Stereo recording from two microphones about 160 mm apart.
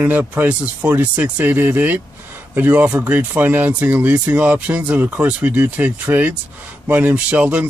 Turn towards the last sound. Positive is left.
turn(degrees=-10)  # may be behind; listen again after turning